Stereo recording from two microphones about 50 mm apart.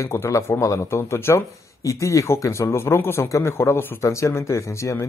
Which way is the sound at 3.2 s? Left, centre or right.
Left.